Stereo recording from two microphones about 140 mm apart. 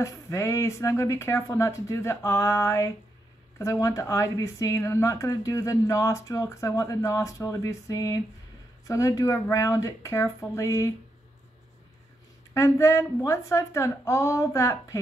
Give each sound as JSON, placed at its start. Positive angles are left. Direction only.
{"t": 0.0, "sound": "a woman's voice", "side_deg": 20}
{"t": 12.5, "sound": "a woman's voice", "side_deg": 20}